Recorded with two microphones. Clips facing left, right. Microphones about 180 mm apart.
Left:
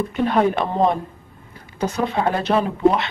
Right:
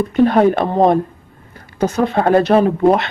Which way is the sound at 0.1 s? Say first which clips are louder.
Right 7 dB; 40° right (ahead or behind).